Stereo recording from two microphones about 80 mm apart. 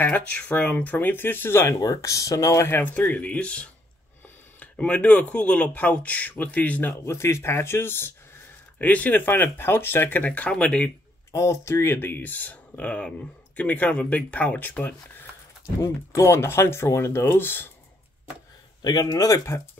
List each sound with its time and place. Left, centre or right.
0.0 s speech: left
1.7 s speech: left
2.8 s speech: left
11.3 s speech: left
15.8 s speech: left
18.8 s speech: left
19.0 s speech: left